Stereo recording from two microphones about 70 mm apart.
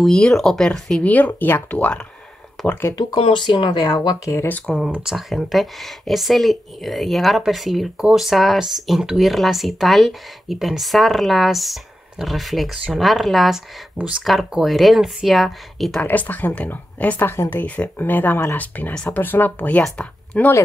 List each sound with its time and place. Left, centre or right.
0.0 s speech: centre
1.0 s speech: left
3.7 s speech: left
4.5 s speech: centre
5.0 s speech: centre
14.0 s speech: centre
16.0 s speech: left